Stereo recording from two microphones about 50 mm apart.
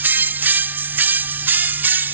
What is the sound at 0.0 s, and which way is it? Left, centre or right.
Music, right.